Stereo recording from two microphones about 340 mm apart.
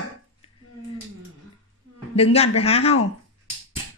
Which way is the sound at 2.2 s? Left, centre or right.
Centre.